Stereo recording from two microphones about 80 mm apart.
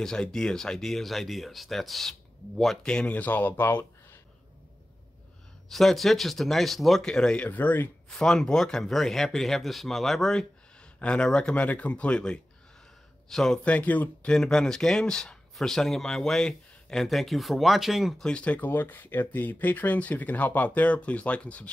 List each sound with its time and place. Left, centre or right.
0.0 s speech: centre; by 4.2 s left
5.7 s speech: centre
7.4 s speech: left
8.2 s speech: centre
13.7 s speech: centre
14.3 s speech: centre
18.2 s speech: centre